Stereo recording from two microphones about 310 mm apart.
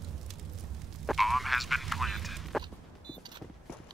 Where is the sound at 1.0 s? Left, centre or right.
Centre.